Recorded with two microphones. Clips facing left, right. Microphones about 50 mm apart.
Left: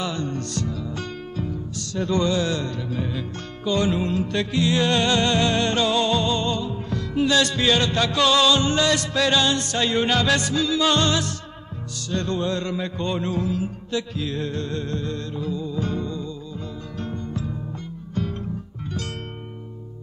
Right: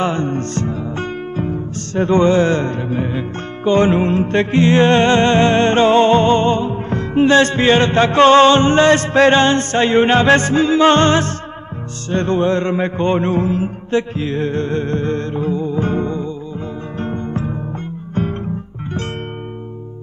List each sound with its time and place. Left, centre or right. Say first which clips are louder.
0.0 s music: right 9 dB; right